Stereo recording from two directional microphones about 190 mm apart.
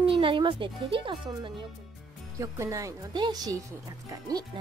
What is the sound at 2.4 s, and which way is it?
A woman's voice, 15° right (ahead or behind).